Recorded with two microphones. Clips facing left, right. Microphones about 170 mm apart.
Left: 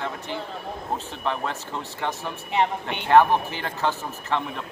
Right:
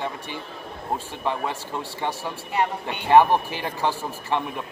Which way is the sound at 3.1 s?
15° right (ahead or behind).